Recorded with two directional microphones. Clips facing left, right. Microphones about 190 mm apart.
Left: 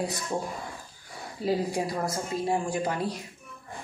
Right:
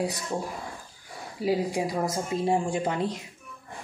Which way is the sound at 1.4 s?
10° right (ahead or behind).